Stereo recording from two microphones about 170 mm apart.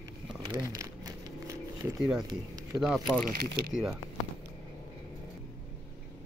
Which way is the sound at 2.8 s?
Centre (ahead or behind).